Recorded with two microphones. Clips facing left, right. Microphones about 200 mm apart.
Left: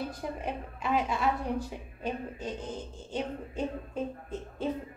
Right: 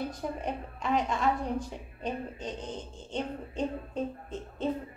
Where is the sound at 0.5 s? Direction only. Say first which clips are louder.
Even; 5° left (ahead or behind).